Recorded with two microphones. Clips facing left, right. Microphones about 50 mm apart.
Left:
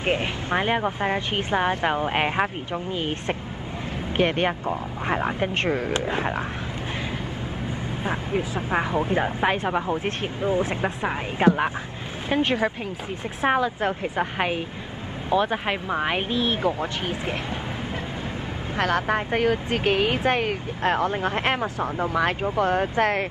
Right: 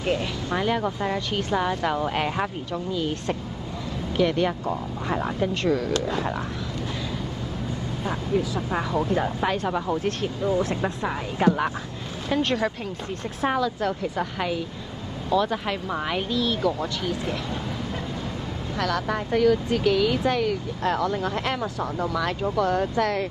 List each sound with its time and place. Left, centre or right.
0.0 s speech: left
8.0 s speech: left
13.4 s speech: left
18.8 s speech: left